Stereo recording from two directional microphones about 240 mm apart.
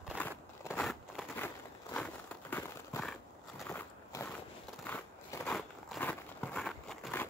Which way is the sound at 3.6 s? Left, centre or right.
Centre.